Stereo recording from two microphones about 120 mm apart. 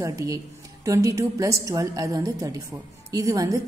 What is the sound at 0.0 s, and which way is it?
A woman's voice, 30° right (ahead or behind).